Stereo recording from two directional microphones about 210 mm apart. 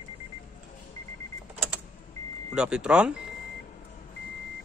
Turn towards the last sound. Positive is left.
turn(degrees=-5)  # may be behind; listen again after turning